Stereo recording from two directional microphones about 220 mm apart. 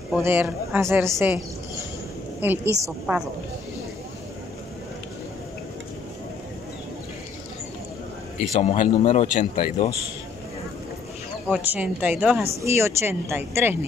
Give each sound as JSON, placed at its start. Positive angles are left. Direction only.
{"t": 0.1, "sound": "speech", "side_deg": -5}
{"t": 2.4, "sound": "speech", "side_deg": -10}
{"t": 8.5, "sound": "a man's voice", "side_deg": 25}
{"t": 11.4, "sound": "a woman's voice", "side_deg": -5}